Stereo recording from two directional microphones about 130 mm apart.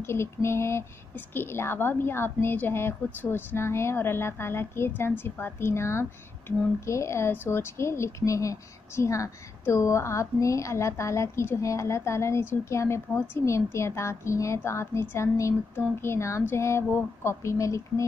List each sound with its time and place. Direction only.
0.0 s speech: 20° left (ahead or behind)